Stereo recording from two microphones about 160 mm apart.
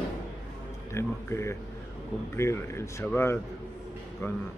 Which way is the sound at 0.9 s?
15° left (ahead or behind).